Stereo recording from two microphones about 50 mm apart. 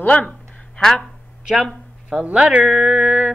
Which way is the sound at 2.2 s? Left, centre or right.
Right.